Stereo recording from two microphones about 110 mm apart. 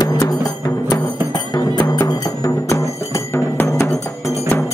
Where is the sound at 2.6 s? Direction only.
30° left (ahead or behind).